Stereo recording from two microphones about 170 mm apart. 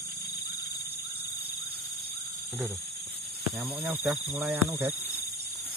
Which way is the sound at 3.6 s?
10° right (ahead or behind).